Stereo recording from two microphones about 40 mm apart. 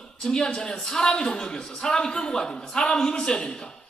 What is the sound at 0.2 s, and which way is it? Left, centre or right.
A man's voice, centre.